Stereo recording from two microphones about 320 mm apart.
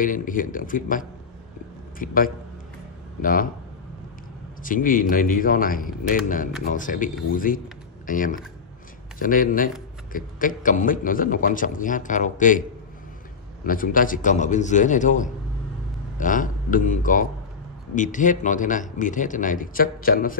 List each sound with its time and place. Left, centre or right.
0.0 s a man's voice: left
4.6 s a man's voice: left
13.7 s a man's voice: left